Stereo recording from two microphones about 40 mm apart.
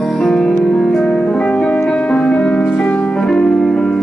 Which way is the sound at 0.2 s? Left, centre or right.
Centre.